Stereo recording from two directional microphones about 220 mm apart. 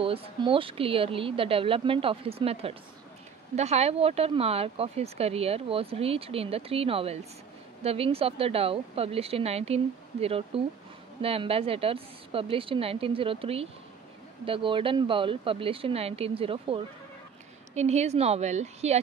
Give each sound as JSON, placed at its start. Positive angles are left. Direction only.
{"t": 0.0, "sound": "a woman's voice", "side_deg": -25}